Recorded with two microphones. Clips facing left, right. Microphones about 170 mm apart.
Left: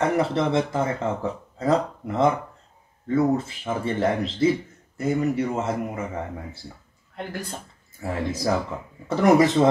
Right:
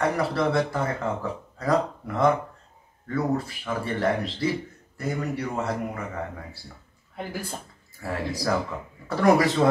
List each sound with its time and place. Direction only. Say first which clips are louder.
0.0 s speech: left 2 dB; 20° left (ahead or behind)
8.0 s speech: left 2 dB; 20° left (ahead or behind)